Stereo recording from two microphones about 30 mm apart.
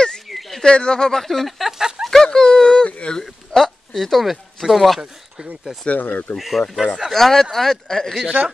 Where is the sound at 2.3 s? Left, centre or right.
Left.